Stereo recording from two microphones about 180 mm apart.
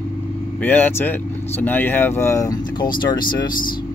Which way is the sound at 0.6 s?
10° left (ahead or behind).